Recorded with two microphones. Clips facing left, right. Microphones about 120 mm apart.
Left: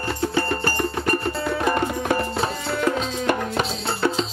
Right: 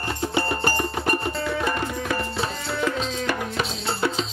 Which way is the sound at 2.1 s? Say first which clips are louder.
Left 4 dB; 40° left (ahead or behind).